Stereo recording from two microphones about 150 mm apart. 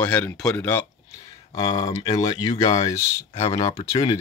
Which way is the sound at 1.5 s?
30° left (ahead or behind).